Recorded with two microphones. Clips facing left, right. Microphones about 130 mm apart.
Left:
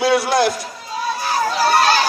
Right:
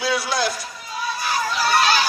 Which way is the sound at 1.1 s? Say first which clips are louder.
Left 4 dB; 35° left (ahead or behind).